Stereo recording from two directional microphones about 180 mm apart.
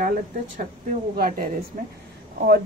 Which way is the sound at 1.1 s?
55° right (ahead or behind).